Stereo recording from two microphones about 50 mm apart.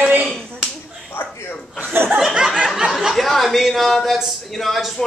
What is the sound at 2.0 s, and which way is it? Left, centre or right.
Chuckle, right.